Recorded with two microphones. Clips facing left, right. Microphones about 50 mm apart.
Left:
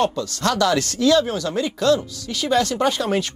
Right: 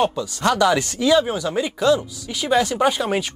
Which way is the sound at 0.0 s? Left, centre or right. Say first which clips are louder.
Right 1 dB; centre.